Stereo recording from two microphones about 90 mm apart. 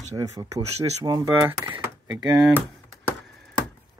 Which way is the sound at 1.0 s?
55° right (ahead or behind).